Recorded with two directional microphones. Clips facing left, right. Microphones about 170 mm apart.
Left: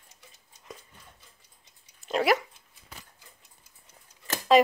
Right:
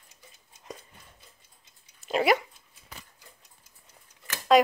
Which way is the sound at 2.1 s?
Centre (ahead or behind).